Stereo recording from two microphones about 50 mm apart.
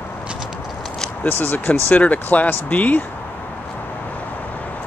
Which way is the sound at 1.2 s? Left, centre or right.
Left.